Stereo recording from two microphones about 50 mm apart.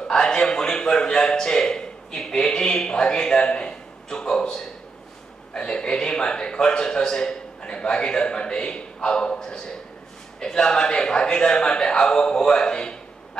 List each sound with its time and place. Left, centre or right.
0.1 s a man's voice: centre